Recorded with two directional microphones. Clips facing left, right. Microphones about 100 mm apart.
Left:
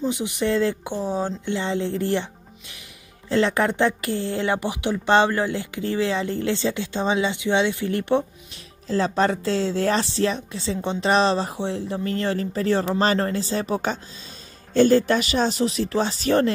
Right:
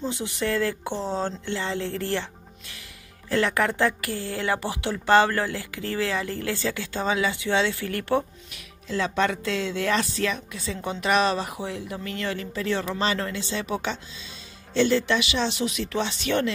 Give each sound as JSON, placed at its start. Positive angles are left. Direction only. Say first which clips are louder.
{"t": 0.0, "sound": "speech", "louder": "left 4 dB", "side_deg": 15}
{"t": 3.3, "sound": "speech", "louder": "left 3 dB", "side_deg": 20}
{"t": 8.8, "sound": "speech", "louder": "left 4 dB", "side_deg": 35}